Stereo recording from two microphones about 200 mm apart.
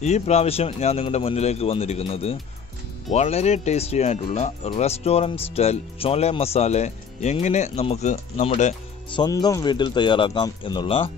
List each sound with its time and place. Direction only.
0.0 s speech: 35° left (ahead or behind)
9.1 s speech: 20° left (ahead or behind)